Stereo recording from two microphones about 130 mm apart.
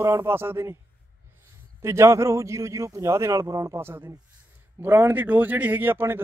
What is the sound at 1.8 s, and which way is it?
A man's voice, 20° right (ahead or behind).